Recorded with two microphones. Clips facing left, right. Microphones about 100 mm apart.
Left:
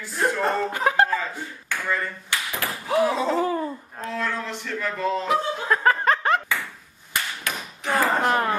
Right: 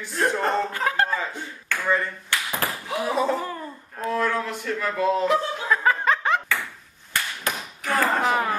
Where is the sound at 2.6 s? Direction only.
40° right (ahead or behind).